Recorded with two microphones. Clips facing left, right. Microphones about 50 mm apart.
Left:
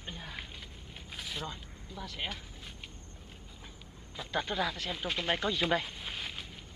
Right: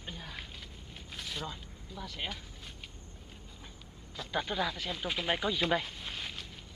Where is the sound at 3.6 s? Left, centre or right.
Centre.